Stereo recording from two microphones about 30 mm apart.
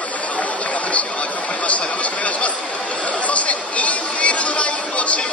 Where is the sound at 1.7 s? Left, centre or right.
Left.